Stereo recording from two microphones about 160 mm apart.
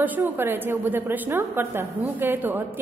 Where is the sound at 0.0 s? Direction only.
10° right (ahead or behind).